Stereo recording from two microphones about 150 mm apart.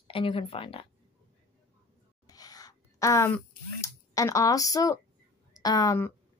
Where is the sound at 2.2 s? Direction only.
25° left (ahead or behind).